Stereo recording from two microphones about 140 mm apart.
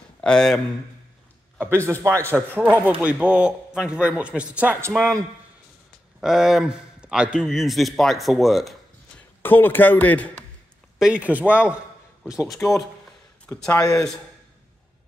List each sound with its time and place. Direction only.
0.2 s speech: 5° left (ahead or behind)
1.6 s a man's voice: 20° right (ahead or behind)
6.2 s a man's voice: 5° right (ahead or behind)
9.4 s a man's voice: 15° left (ahead or behind)
11.0 s a man's voice: 5° right (ahead or behind)
13.5 s speech: 15° left (ahead or behind)